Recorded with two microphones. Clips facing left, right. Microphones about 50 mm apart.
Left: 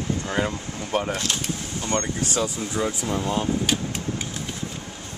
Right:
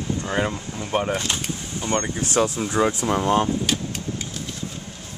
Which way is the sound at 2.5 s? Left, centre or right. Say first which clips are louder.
Right 5 dB; right.